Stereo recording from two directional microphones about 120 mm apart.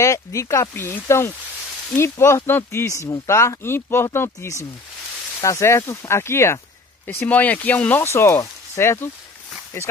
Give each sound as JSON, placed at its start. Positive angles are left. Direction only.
{"t": 0.0, "sound": "speech", "side_deg": 25}